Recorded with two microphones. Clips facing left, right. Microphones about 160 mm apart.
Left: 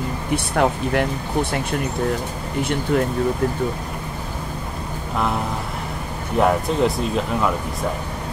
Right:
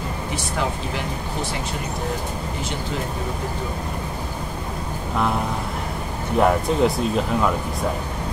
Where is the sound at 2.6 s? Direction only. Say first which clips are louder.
Left 11 dB; 60° left (ahead or behind).